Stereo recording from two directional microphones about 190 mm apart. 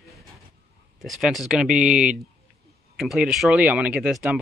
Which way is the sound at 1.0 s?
Centre (ahead or behind).